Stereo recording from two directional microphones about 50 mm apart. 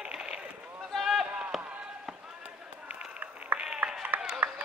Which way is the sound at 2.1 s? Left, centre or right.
Centre.